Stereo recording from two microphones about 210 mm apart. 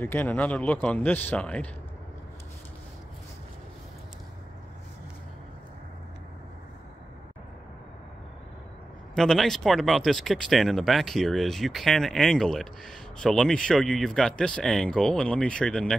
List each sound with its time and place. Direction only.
0.0 s a man's voice: 10° left (ahead or behind)
9.1 s speech: centre (ahead or behind)